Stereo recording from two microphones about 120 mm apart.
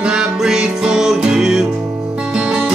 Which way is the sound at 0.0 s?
5° right (ahead or behind).